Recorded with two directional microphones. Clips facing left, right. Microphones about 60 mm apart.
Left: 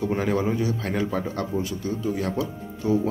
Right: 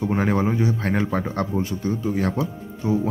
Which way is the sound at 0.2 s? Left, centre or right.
Right.